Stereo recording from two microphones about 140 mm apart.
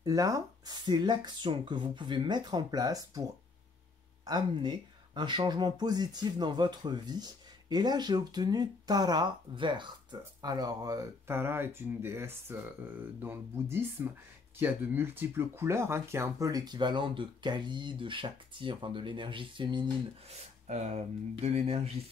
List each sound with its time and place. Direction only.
0.0 s speech: 25° right (ahead or behind)
20.2 s speech: 55° right (ahead or behind)